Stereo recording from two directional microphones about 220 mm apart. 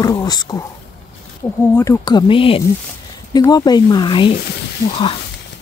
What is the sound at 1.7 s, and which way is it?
Speech, 15° left (ahead or behind).